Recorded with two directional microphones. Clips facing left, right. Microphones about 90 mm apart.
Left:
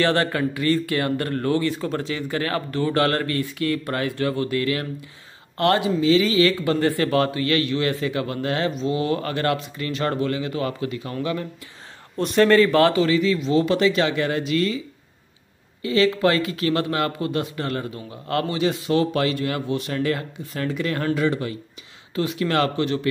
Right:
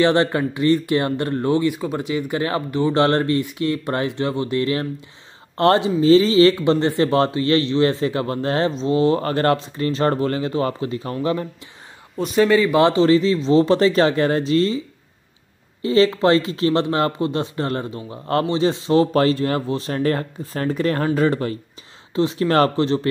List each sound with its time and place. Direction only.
0.0 s speech: 20° right (ahead or behind)
12.2 s speech: 5° right (ahead or behind)
13.0 s speech: 30° right (ahead or behind)
15.8 s speech: 30° right (ahead or behind)
22.1 s speech: 30° right (ahead or behind)